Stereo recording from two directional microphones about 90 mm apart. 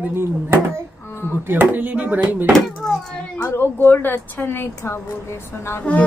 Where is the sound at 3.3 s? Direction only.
25° left (ahead or behind).